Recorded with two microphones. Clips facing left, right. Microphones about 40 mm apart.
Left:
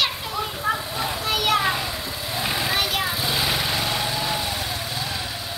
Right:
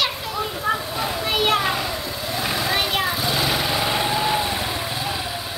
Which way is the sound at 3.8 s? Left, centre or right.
Centre.